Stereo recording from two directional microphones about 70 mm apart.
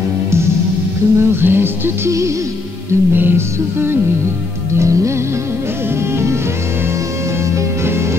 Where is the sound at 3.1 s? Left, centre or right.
Right.